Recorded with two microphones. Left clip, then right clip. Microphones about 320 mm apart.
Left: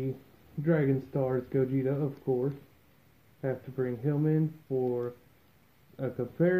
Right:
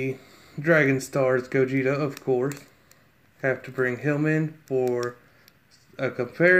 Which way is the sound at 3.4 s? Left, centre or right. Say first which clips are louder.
Right 8 dB; centre.